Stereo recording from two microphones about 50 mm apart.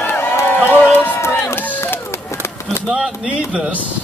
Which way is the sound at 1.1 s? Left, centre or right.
Left.